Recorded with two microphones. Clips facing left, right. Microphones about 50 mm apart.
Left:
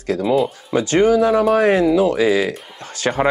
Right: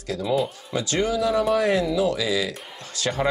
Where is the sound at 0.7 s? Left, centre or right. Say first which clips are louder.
Left 9 dB; left.